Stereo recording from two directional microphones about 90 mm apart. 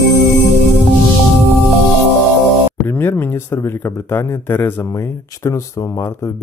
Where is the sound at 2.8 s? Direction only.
25° left (ahead or behind).